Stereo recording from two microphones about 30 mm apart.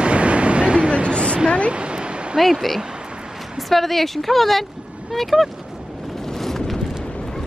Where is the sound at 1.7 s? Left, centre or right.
Right.